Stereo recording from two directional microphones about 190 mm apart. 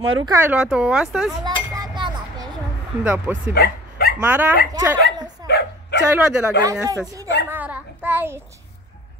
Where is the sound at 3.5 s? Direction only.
55° left (ahead or behind).